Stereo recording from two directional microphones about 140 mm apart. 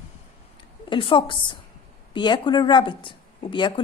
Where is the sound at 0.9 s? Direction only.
40° left (ahead or behind).